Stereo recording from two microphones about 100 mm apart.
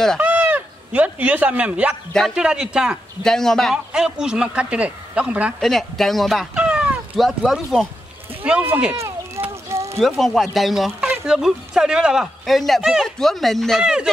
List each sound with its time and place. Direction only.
0.2 s speech: 15° right (ahead or behind)
3.2 s speech: 5° left (ahead or behind)
3.7 s speech: 5° right (ahead or behind)
5.6 s speech: centre (ahead or behind)
6.5 s cat: 10° right (ahead or behind)
7.2 s speech: centre (ahead or behind)
8.4 s speech: 15° right (ahead or behind)
8.9 s a sound: 30° right (ahead or behind)
9.9 s speech: centre (ahead or behind)